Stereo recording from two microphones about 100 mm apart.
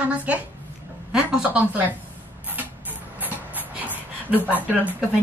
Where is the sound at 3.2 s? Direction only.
20° right (ahead or behind).